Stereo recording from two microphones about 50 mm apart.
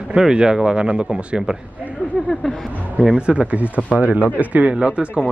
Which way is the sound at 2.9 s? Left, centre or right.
Right.